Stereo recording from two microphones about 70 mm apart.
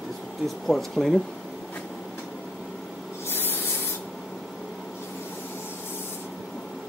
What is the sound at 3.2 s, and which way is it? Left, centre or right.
Spray, left.